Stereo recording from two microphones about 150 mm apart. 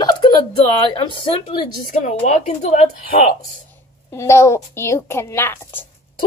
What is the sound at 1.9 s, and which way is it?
Speech, 55° left (ahead or behind).